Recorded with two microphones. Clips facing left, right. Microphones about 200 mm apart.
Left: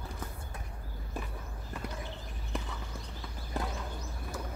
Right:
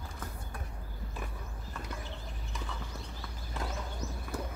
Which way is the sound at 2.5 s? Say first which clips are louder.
Left 6 dB; 60° left (ahead or behind).